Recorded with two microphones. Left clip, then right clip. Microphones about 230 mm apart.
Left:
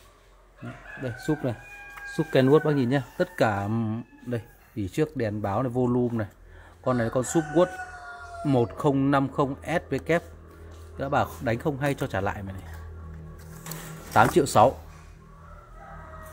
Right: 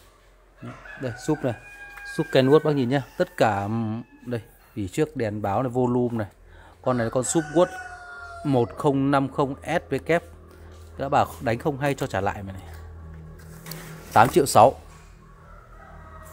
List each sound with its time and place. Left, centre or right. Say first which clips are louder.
1.2 s speech: right 3 dB; right
14.1 s speech: right 3 dB; centre